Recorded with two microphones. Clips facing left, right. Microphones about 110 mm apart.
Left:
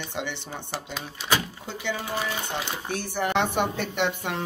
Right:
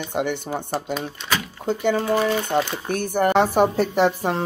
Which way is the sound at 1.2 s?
5° left (ahead or behind).